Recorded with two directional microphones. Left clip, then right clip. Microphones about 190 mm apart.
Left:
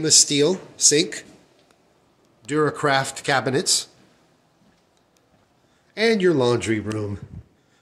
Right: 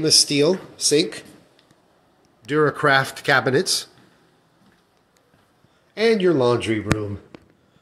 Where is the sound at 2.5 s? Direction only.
Centre (ahead or behind).